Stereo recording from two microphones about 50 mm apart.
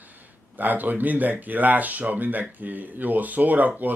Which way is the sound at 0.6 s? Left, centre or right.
Right.